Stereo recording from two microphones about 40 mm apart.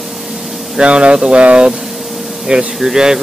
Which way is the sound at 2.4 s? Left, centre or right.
Centre.